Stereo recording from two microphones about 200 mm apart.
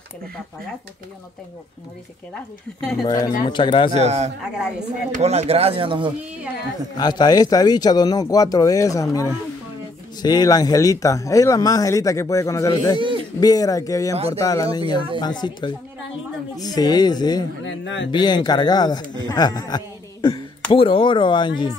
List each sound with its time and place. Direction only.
2.8 s speech: centre (ahead or behind)
3.1 s speech: 15° left (ahead or behind)
3.9 s a man's voice: 35° right (ahead or behind)
4.6 s speech: 5° right (ahead or behind)
5.1 s speech: 30° right (ahead or behind)
7.0 s speech: 20° left (ahead or behind)
14.1 s a man's voice: 30° right (ahead or behind)
14.4 s speech: 15° left (ahead or behind)
17.6 s a man's voice: 65° left (ahead or behind)
18.1 s speech: 20° left (ahead or behind)